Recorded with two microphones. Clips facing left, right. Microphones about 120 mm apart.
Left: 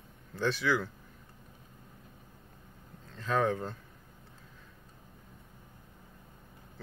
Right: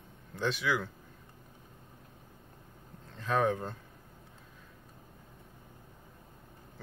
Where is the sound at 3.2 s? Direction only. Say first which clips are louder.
Even; 15° right (ahead or behind).